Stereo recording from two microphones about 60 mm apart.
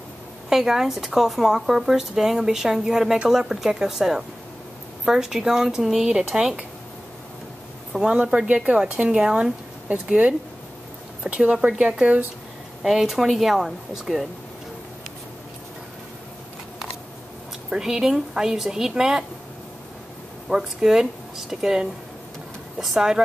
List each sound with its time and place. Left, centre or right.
0.5 s speech: centre
7.9 s speech: centre
12.8 s speech: centre
17.6 s speech: centre
20.4 s speech: centre